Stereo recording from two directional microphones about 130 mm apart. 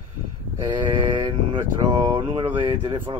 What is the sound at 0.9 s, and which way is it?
Speech, 40° right (ahead or behind).